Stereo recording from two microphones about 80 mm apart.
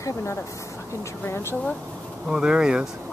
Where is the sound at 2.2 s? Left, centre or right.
Centre.